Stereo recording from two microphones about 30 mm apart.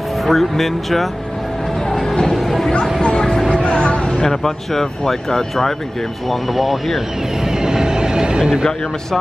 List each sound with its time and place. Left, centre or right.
0.3 s speech: centre
2.3 s music: centre
3.0 s a sound: left
3.5 s music: left
4.3 s speech: centre
6.5 s speech: centre
7.6 s train: right